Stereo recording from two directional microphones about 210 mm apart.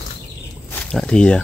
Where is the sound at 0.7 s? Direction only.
5° left (ahead or behind).